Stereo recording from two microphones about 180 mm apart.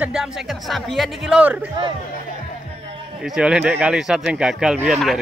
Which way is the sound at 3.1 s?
5° right (ahead or behind).